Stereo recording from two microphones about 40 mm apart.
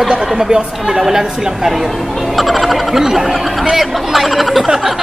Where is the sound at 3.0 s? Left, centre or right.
Centre.